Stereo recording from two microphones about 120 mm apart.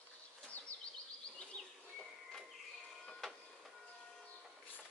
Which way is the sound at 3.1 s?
5° left (ahead or behind).